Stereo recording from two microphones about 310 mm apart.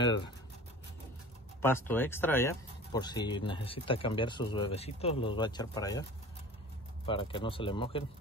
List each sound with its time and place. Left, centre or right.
1.6 s speech: centre
7.1 s speech: centre